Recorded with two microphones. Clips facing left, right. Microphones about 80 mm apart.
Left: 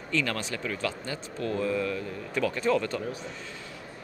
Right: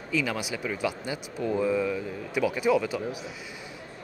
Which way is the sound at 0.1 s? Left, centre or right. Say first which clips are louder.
Right 1 dB; centre.